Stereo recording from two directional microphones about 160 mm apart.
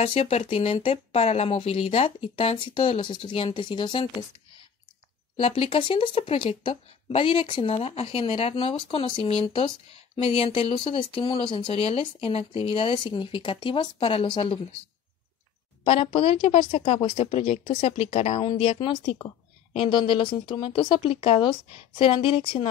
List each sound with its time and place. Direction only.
0.0 s speech: 40° left (ahead or behind)
5.4 s speech: 35° left (ahead or behind)
15.8 s speech: 35° left (ahead or behind)